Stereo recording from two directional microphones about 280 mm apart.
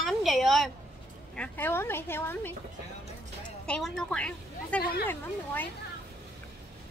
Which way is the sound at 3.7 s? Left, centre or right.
Centre.